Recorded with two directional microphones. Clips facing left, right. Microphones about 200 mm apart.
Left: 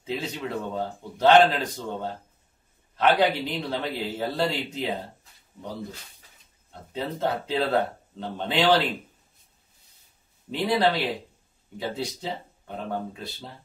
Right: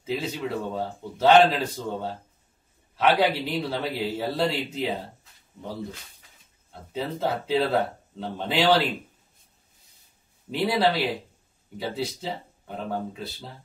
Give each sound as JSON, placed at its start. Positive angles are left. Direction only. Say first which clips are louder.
{"t": 0.0, "sound": "a man's voice", "louder": "right 2 dB", "side_deg": -5}
{"t": 6.7, "sound": "a man's voice", "louder": "right 1 dB", "side_deg": -5}
{"t": 10.8, "sound": "a man's voice", "louder": "even", "side_deg": -5}